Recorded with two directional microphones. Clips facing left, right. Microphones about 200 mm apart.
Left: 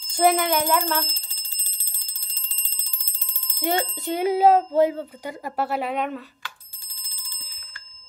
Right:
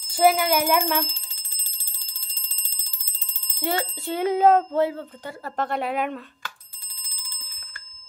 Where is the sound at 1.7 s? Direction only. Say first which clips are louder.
Right 1 dB; 55° left (ahead or behind).